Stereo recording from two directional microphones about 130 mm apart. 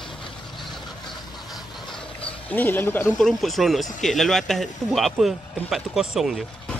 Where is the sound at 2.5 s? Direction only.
15° left (ahead or behind).